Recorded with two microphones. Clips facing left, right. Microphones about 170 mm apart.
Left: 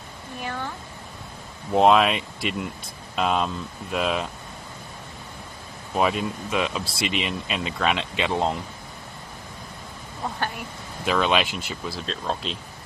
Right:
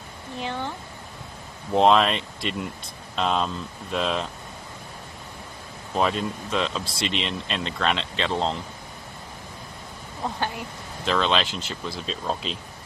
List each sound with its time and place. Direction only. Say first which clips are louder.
0.4 s a sound: right 2 dB; 20° right (ahead or behind)
1.7 s speech: left 1 dB; 5° left (ahead or behind)
5.9 s speech: left 1 dB; 5° left (ahead or behind)
11.1 s speech: left 1 dB; 10° left (ahead or behind)